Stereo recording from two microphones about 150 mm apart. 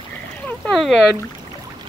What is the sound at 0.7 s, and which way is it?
Speech, centre (ahead or behind).